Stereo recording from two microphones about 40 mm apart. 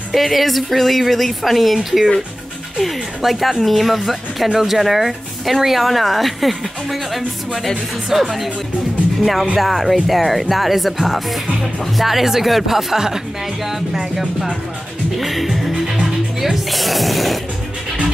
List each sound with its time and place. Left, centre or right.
0.1 s speech: centre
3.2 s speech: centre